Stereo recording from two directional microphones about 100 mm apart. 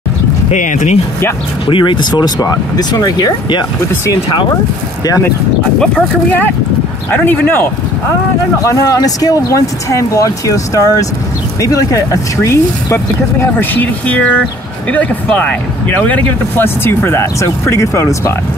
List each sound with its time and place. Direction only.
1.7 s speech: 55° left (ahead or behind)
3.9 s speech: 30° left (ahead or behind)
5.8 s speech: 10° left (ahead or behind)
8.6 s speech: 35° left (ahead or behind)